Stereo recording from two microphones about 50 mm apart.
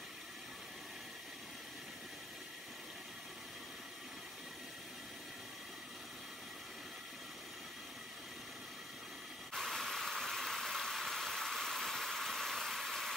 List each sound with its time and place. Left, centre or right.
9.6 s vehicle: centre